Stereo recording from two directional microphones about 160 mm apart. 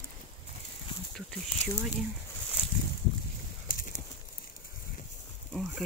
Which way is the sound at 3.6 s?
60° left (ahead or behind).